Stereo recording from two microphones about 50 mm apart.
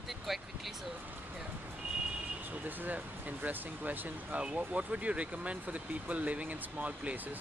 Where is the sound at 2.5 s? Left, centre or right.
Right.